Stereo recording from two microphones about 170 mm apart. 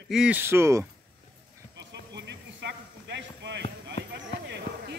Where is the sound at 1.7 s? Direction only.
90° right.